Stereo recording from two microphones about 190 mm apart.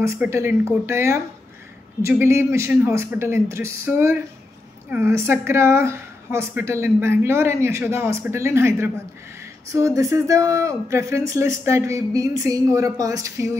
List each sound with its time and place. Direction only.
0.0 s speech: 15° right (ahead or behind)